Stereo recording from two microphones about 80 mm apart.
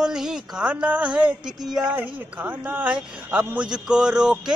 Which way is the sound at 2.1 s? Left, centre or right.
Right.